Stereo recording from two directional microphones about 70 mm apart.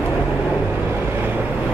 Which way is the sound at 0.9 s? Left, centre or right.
Right.